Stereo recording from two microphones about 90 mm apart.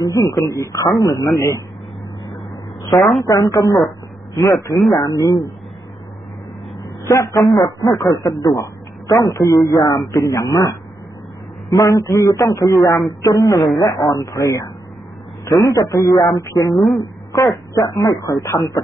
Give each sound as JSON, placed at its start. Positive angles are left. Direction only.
{"t": 0.0, "sound": "a man's voice", "side_deg": 35}
{"t": 3.0, "sound": "a woman's voice", "side_deg": 0}
{"t": 3.3, "sound": "a man's voice", "side_deg": 40}
{"t": 4.7, "sound": "a woman's voice", "side_deg": 0}
{"t": 5.0, "sound": "speech", "side_deg": 45}
{"t": 7.1, "sound": "a man's voice", "side_deg": 35}
{"t": 11.7, "sound": "a man's voice", "side_deg": 40}
{"t": 16.7, "sound": "a woman's voice", "side_deg": 0}
{"t": 17.3, "sound": "a man's voice", "side_deg": 35}